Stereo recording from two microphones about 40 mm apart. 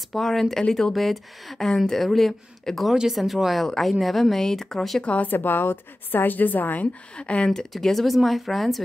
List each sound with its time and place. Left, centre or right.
0.1 s speech: centre
0.9 s speech: centre
3.6 s speech: centre
5.0 s speech: left
5.3 s a woman's voice: left
7.2 s speech: left
7.5 s speech: centre